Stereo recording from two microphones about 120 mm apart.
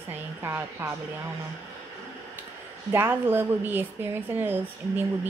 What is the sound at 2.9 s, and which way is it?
A woman's voice, 20° right (ahead or behind).